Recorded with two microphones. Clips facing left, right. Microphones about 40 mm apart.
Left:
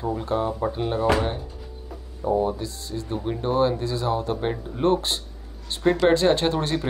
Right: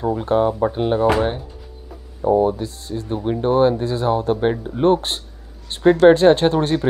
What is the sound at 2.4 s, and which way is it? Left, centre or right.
Speech, right.